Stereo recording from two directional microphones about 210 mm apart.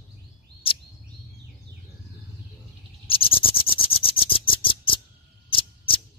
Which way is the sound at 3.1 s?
25° left (ahead or behind).